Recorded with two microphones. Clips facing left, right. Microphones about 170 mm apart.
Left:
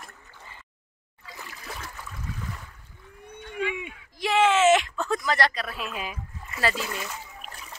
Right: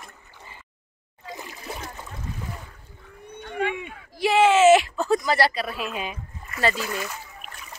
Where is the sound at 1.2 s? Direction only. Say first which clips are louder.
Right 5 dB; 20° right (ahead or behind).